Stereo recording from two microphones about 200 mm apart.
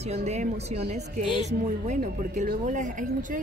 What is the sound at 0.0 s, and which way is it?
Speech, 35° right (ahead or behind).